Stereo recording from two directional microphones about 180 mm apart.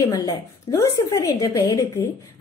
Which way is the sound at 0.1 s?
20° left (ahead or behind).